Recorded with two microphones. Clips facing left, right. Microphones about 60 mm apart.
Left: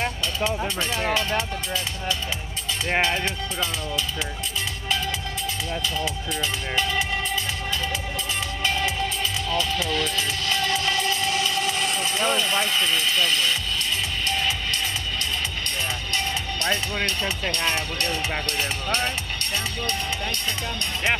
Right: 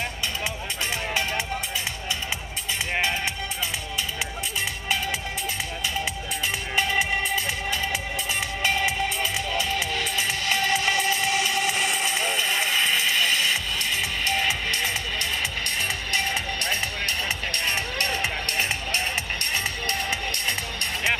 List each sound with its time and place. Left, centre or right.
6.7 s speech: centre
8.6 s music: right
12.3 s speech: right
14.2 s music: right
18.0 s speech: right
19.5 s music: right